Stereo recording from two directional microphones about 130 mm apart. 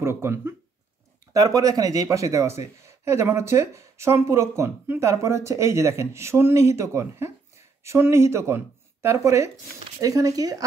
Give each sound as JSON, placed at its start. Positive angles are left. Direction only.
{"t": 0.0, "sound": "speech", "side_deg": -20}